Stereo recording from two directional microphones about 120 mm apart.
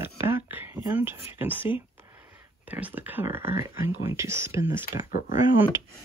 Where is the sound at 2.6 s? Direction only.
15° right (ahead or behind).